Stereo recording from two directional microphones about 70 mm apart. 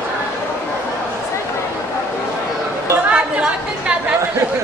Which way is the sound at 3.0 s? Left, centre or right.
Centre.